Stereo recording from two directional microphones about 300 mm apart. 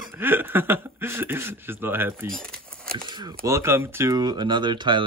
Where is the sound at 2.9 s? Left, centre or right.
Centre.